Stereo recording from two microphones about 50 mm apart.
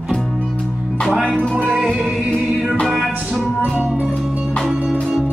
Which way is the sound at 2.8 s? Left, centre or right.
Centre.